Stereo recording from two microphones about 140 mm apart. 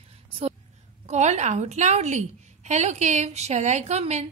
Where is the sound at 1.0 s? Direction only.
55° right (ahead or behind).